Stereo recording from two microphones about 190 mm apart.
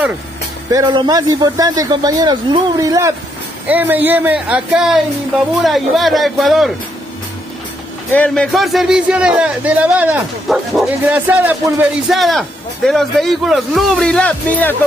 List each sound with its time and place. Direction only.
0.7 s speech: 20° right (ahead or behind); by 6.7 s centre (ahead or behind)
8.1 s speech: 5° left (ahead or behind)